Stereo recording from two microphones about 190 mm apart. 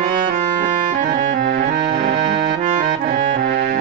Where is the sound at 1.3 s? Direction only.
50° right (ahead or behind).